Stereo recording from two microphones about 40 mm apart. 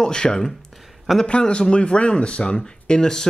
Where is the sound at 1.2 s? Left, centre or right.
Left.